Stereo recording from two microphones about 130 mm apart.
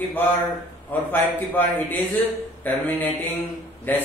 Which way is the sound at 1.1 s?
15° left (ahead or behind).